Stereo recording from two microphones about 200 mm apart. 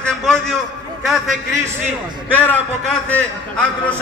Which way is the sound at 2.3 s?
5° left (ahead or behind).